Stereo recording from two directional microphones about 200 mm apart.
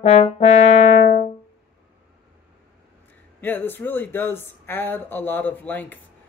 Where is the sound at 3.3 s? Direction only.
10° left (ahead or behind).